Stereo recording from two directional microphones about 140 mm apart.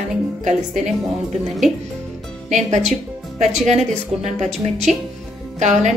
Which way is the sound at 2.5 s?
55° right (ahead or behind).